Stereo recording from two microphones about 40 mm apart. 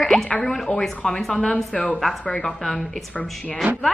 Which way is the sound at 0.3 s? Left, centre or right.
Left.